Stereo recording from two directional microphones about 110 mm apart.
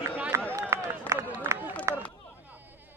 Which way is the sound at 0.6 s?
25° right (ahead or behind).